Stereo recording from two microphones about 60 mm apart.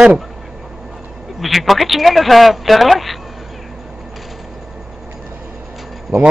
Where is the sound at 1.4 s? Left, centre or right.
Centre.